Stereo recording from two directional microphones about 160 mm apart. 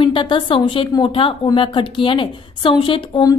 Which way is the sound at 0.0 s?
30° left (ahead or behind).